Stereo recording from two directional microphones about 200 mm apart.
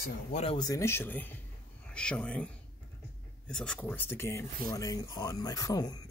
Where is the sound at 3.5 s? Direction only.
5° left (ahead or behind).